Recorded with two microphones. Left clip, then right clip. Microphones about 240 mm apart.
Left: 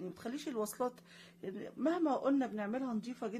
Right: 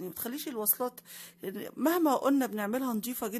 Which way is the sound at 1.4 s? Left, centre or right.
Right.